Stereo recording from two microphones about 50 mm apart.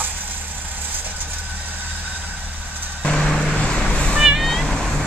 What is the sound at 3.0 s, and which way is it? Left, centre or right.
Vehicle, centre.